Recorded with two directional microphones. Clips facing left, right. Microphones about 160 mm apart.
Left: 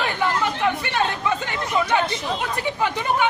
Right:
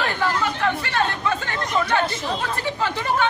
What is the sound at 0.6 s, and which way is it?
Speech, 15° left (ahead or behind).